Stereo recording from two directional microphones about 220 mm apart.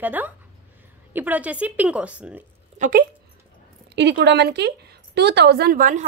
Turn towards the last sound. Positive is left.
turn(degrees=-35)  # may be behind; listen again after turning